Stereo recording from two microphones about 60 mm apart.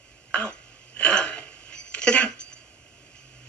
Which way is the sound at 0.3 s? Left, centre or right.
Left.